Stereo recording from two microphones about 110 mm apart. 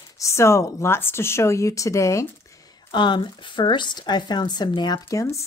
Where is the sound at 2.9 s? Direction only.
45° left (ahead or behind).